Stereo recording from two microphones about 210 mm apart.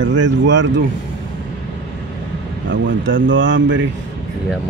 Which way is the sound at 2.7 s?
60° right (ahead or behind).